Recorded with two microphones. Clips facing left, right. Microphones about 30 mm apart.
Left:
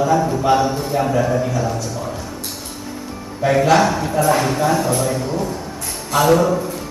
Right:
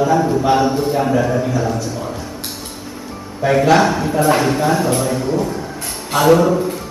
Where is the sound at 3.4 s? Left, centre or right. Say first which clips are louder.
Right 1 dB; centre.